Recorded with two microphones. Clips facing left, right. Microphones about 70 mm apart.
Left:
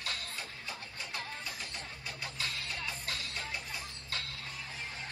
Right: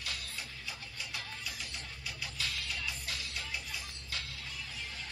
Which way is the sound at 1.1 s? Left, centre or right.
Left.